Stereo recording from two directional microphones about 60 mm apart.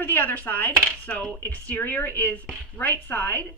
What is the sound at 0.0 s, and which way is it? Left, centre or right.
A woman's voice, left.